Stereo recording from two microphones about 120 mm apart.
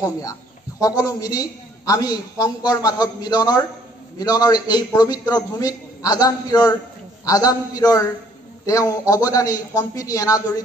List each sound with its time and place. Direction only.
0.0 s a man's voice: 30° left (ahead or behind)